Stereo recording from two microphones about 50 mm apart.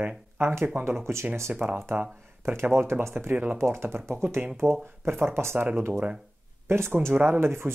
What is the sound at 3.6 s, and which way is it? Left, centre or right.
Speech, right.